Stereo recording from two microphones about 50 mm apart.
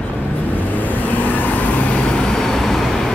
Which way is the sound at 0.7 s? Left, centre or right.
Left.